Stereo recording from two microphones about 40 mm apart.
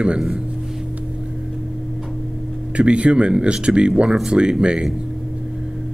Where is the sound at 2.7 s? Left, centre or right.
Right.